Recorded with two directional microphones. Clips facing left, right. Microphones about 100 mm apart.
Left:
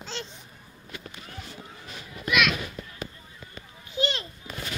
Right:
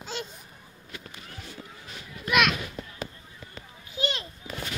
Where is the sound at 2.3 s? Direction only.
45° right (ahead or behind).